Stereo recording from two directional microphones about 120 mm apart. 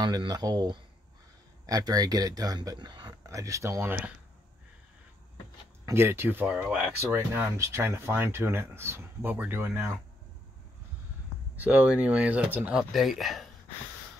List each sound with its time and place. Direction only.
0.0 s speech: 35° right (ahead or behind)
5.9 s speech: 20° right (ahead or behind)
11.5 s speech: 15° right (ahead or behind)
12.9 s speech: centre (ahead or behind)